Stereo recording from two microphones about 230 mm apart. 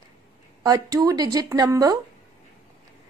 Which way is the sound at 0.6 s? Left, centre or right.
Centre.